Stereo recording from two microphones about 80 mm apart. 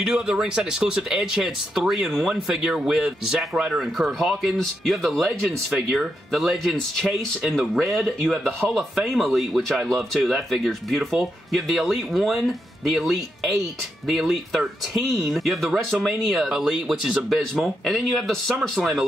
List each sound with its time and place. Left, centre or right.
0.0 s speech: centre